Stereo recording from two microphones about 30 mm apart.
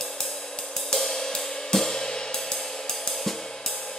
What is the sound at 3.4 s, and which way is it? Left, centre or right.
Music, left.